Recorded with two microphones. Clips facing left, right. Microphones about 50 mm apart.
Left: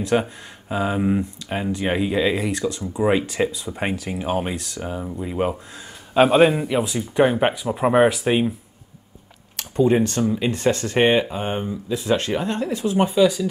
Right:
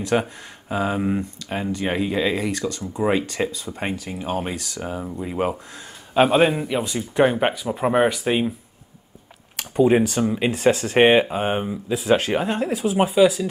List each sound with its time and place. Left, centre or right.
0.0 s speech: centre
4.5 s speech: centre
9.6 s speech: centre